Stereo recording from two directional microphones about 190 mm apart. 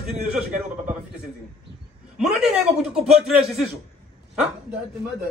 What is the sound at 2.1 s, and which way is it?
Speech, 5° right (ahead or behind).